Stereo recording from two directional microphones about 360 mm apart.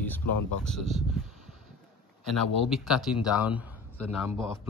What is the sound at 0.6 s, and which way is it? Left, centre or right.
Speech, centre.